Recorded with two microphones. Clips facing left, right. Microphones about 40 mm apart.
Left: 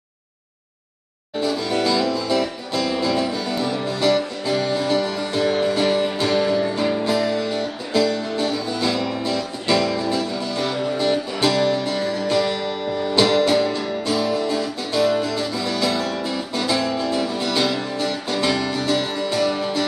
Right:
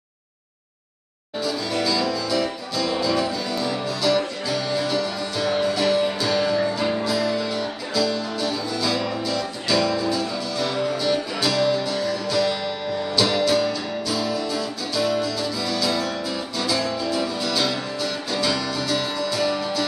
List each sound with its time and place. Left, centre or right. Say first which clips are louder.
1.4 s music: left 3 dB; left
16.1 s guitar: left 2 dB; left
17.3 s music: left 2 dB; left